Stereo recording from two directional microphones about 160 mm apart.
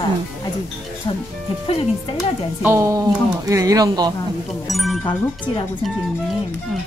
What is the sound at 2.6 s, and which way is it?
Speech, 15° right (ahead or behind).